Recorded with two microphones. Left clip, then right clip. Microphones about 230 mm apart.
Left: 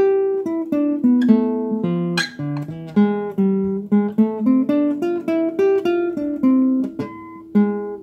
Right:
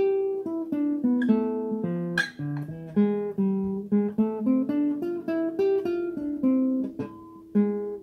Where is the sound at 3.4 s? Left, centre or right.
Left.